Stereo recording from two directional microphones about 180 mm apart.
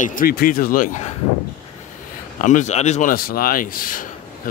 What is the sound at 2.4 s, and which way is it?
Speech, 45° left (ahead or behind).